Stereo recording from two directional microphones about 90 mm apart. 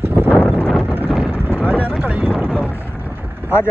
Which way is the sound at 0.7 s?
5° left (ahead or behind).